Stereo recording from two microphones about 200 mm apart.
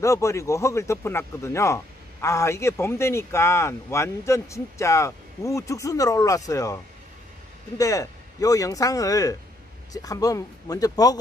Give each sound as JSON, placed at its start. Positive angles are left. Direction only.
{"t": 0.0, "sound": "speech", "side_deg": 15}